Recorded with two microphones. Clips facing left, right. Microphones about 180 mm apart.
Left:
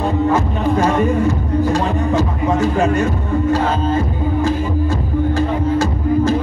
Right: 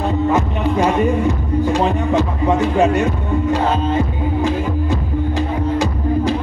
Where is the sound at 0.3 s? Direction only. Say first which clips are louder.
Left 1 dB; 20° right (ahead or behind).